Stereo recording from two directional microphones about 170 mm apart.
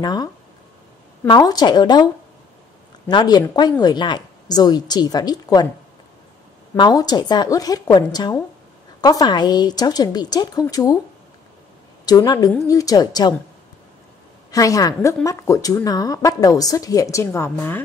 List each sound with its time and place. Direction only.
0.0 s speech: 25° left (ahead or behind)
3.1 s speech: 25° left (ahead or behind)
6.8 s speech: 20° left (ahead or behind)
12.1 s speech: 20° left (ahead or behind)
14.5 s speech: 20° left (ahead or behind)